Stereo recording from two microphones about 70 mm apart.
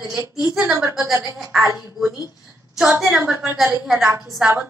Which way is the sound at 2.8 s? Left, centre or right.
Right.